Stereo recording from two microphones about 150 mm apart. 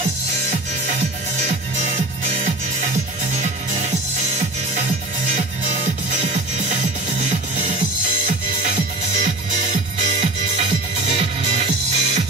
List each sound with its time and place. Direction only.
9.2 s music: 55° right (ahead or behind)